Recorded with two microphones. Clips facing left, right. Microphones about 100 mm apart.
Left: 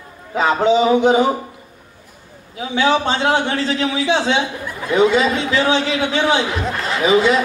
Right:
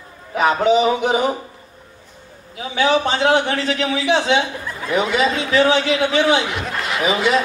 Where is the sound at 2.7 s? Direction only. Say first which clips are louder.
Left 1 dB; 30° left (ahead or behind).